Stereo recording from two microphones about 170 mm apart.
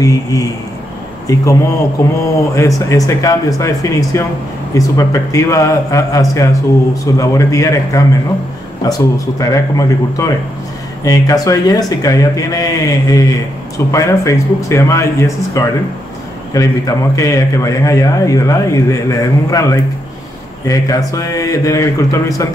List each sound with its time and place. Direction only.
0.0 s a man's voice: 20° left (ahead or behind)